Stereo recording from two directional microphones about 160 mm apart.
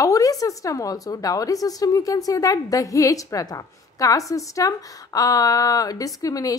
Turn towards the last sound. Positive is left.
turn(degrees=20)  # may be behind; listen again after turning